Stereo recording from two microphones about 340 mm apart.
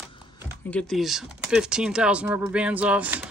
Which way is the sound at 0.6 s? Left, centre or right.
Centre.